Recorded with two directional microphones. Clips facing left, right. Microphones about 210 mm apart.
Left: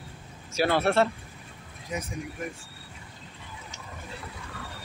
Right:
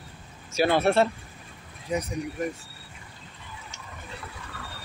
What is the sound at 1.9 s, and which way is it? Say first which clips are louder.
Speech: right 6 dB; 35° right (ahead or behind).